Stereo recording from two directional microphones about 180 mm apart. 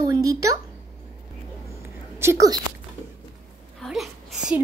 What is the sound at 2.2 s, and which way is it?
Speech, 15° right (ahead or behind).